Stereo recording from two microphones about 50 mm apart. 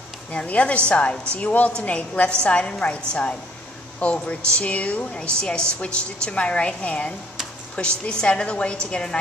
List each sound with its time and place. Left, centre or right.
0.3 s a woman's voice: left